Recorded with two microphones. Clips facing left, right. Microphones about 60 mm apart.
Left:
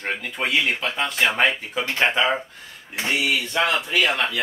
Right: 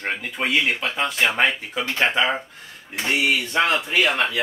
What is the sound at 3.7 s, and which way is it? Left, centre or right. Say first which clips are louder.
Speech: right 1 dB; centre.